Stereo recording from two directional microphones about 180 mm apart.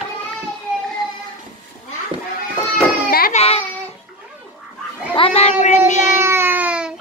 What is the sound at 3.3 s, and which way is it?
Speech, 35° left (ahead or behind).